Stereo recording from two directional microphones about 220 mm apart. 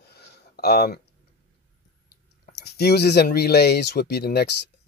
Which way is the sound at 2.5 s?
50° left (ahead or behind).